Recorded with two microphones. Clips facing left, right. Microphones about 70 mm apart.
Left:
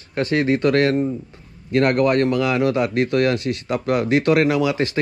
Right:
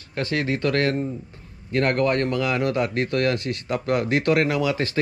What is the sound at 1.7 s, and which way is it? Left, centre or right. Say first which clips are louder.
Speech: left 4 dB; left.